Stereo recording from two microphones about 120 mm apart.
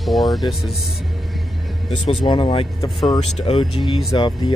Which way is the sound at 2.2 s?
45° left (ahead or behind).